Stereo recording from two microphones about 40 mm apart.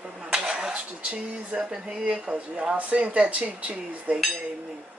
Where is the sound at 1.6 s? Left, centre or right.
Centre; by 4.2 s right.